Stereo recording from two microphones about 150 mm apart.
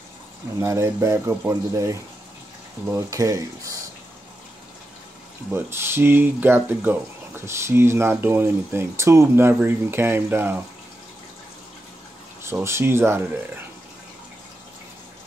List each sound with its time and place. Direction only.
0.6 s speech: 20° right (ahead or behind)
5.5 s speech: 15° right (ahead or behind)
12.6 s speech: 15° right (ahead or behind)